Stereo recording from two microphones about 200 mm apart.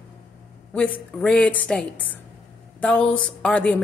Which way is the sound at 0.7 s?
10° left (ahead or behind).